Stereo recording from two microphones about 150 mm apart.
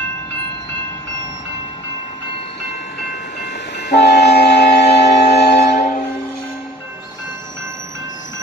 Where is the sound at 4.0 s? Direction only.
90° left.